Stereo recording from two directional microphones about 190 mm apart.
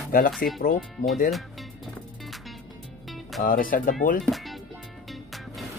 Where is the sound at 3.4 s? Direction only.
45° left (ahead or behind).